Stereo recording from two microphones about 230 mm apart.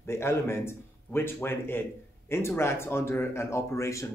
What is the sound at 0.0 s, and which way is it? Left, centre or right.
A man's voice, centre.